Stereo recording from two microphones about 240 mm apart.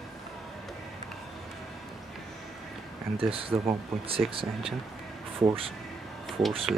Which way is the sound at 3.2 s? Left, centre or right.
Right.